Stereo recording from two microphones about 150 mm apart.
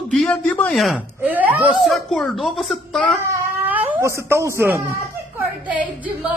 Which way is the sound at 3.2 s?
15° right (ahead or behind).